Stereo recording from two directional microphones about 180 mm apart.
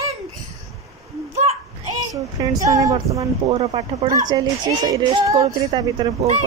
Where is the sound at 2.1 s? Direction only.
20° right (ahead or behind).